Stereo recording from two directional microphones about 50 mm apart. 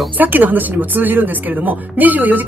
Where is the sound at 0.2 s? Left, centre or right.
Right.